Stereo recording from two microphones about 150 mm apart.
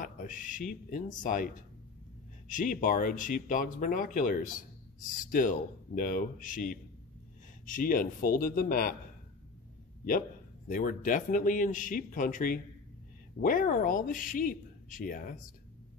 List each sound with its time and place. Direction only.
0.0 s speech: 65° left (ahead or behind)
10.7 s speech: 65° left (ahead or behind)